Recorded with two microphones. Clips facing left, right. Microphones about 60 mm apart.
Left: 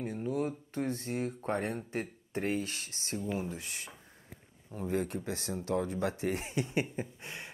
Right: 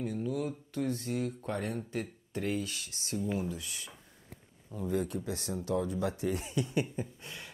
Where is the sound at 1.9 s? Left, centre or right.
Left.